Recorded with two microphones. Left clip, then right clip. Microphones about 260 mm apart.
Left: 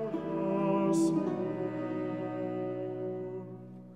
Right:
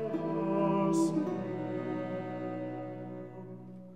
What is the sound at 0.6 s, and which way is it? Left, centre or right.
Music, left.